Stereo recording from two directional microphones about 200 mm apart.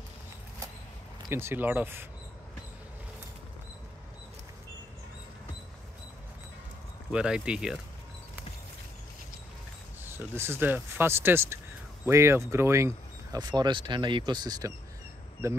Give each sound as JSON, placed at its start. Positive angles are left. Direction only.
{"t": 1.3, "sound": "speech", "side_deg": -10}
{"t": 7.1, "sound": "speech", "side_deg": -5}
{"t": 10.0, "sound": "speech", "side_deg": -10}